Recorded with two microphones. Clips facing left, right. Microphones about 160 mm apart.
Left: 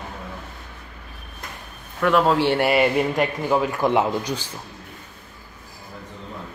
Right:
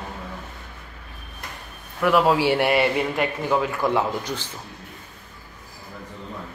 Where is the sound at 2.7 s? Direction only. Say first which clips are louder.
Left 2 dB; 15° left (ahead or behind).